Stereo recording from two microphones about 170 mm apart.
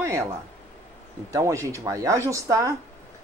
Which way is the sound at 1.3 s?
20° right (ahead or behind).